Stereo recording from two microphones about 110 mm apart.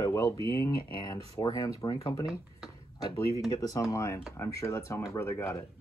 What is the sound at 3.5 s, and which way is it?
Speech, 35° left (ahead or behind).